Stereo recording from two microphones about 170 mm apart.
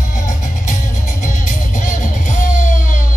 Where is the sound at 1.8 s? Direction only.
50° left (ahead or behind).